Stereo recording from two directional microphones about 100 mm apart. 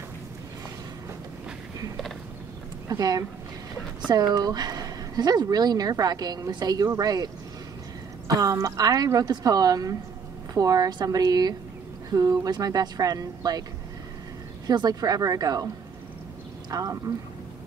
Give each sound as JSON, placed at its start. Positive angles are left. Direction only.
{"t": 2.9, "sound": "speech", "side_deg": -40}
{"t": 4.3, "sound": "speech", "side_deg": -40}
{"t": 8.4, "sound": "speech", "side_deg": -30}
{"t": 14.7, "sound": "speech", "side_deg": -45}
{"t": 16.7, "sound": "speech", "side_deg": -35}